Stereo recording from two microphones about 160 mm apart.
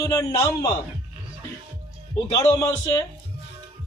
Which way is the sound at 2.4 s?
20° left (ahead or behind).